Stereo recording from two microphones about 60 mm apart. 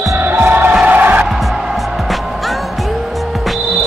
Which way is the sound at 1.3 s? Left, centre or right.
Centre.